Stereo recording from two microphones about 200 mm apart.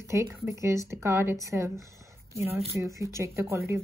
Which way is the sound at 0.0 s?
15° right (ahead or behind).